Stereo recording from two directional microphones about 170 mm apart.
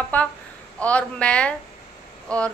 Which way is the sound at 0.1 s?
10° left (ahead or behind).